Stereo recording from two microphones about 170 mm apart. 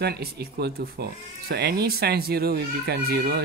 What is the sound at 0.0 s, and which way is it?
Speech, 65° right (ahead or behind).